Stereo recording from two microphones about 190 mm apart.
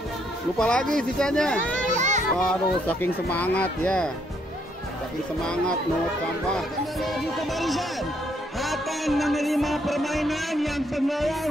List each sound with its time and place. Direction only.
0.6 s music: 5° left (ahead or behind)
2.0 s children playing: 40° right (ahead or behind)
2.3 s speech: 5° left (ahead or behind)
5.4 s music: 5° left (ahead or behind)